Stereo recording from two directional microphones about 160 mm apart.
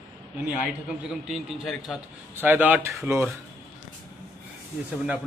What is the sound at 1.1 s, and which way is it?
Speech, centre (ahead or behind).